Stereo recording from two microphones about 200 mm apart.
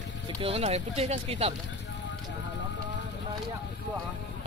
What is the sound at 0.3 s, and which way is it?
Speech, 25° right (ahead or behind).